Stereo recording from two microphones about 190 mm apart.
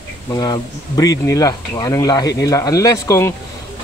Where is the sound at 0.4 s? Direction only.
20° left (ahead or behind).